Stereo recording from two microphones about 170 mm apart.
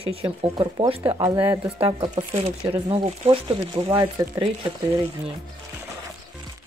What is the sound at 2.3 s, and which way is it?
Speech, 35° right (ahead or behind).